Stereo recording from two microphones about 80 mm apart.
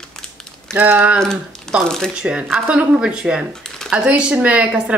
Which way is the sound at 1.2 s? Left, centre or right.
Centre.